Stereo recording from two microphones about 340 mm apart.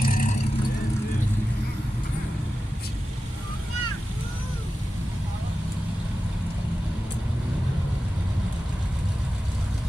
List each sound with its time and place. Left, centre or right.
0.0 s vehicle: left